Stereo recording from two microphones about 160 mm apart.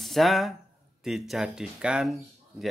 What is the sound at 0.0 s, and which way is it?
Speech, centre (ahead or behind).